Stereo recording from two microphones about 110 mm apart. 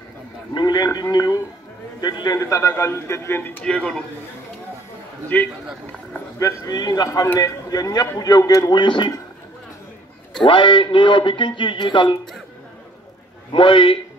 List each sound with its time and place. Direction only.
0.6 s a sound: 40° left (ahead or behind)
1.1 s a man's voice: 35° left (ahead or behind); by 3.6 s 20° left (ahead or behind)
3.6 s a man's voice: 5° left (ahead or behind)
5.3 s a man's voice: 15° left (ahead or behind)
6.4 s speech: 35° left (ahead or behind)
10.4 s a man's voice: 50° left (ahead or behind)
13.5 s a man's voice: 50° left (ahead or behind)